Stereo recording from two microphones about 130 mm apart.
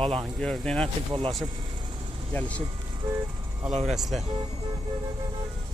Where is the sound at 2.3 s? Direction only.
10° left (ahead or behind).